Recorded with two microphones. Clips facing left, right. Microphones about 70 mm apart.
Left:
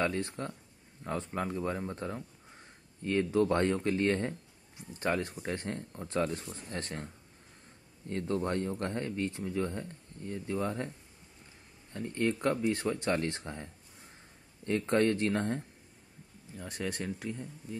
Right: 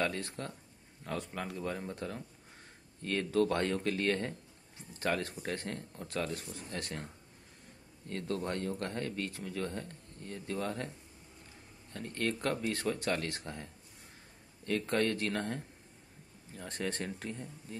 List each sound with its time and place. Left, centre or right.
0.0 s speech: left
3.0 s speech: centre
8.1 s speech: left
11.9 s speech: centre
14.7 s speech: left
16.5 s speech: centre